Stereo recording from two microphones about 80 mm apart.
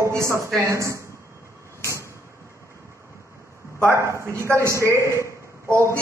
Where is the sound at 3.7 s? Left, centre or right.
Right.